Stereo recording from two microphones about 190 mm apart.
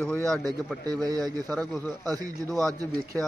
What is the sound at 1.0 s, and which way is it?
Speech, 20° right (ahead or behind).